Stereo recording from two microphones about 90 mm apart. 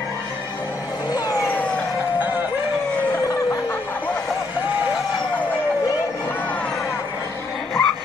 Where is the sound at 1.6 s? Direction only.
10° left (ahead or behind).